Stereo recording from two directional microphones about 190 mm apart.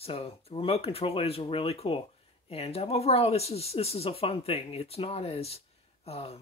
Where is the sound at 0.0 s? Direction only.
30° left (ahead or behind).